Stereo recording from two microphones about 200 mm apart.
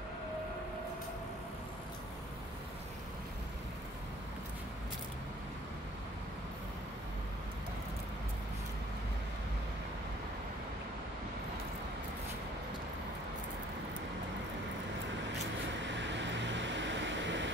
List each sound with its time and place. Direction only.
15.8 s vehicle: 65° right (ahead or behind)